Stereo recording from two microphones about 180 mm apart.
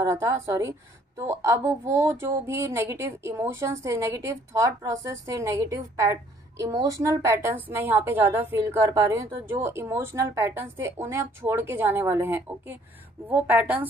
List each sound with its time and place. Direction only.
0.0 s a woman's voice: 15° right (ahead or behind)